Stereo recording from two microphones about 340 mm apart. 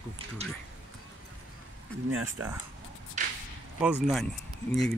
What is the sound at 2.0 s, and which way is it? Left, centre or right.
Speech, right.